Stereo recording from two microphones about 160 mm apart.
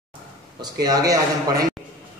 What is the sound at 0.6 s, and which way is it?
A man's voice, 25° right (ahead or behind).